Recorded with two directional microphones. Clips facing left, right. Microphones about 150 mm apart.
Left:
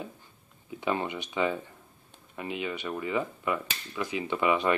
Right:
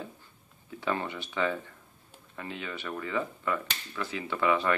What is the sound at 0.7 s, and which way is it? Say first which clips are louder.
Speech: left 2 dB; 15° left (ahead or behind).